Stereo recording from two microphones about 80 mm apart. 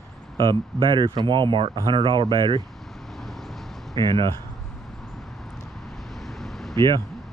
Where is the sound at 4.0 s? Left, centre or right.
Right.